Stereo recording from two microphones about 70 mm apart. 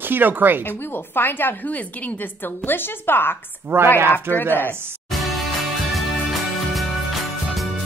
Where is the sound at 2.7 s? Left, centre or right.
Left.